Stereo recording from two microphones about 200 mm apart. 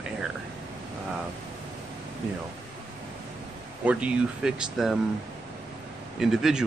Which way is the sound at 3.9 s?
5° right (ahead or behind).